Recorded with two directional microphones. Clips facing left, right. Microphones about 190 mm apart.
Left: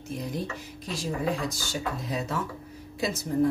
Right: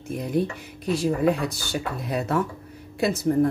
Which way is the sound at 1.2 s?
60° right (ahead or behind).